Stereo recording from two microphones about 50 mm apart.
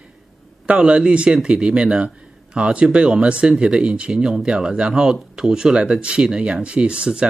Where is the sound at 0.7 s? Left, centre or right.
Right.